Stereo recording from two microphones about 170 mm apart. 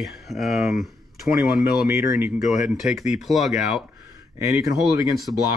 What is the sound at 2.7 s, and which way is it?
Speech, centre (ahead or behind).